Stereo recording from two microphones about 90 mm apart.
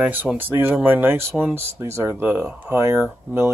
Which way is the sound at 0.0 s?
20° right (ahead or behind).